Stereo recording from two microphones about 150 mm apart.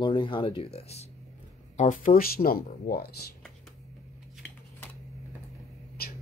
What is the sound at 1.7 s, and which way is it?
Speech, 60° left (ahead or behind).